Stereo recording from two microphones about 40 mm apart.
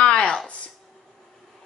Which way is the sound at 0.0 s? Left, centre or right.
Left.